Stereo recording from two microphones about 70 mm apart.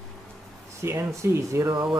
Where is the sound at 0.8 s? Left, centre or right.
Right.